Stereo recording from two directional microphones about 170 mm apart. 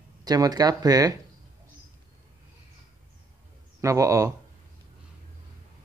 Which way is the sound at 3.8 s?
20° right (ahead or behind).